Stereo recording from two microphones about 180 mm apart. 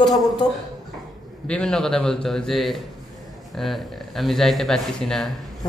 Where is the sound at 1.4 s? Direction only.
5° left (ahead or behind).